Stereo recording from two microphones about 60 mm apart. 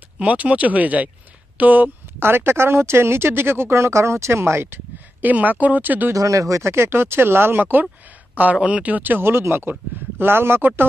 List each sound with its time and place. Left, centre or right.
0.2 s speech: right
6.1 s speech: right
8.4 s speech: right